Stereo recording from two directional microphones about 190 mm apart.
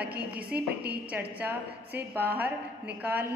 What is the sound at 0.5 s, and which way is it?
Speech, 55° right (ahead or behind).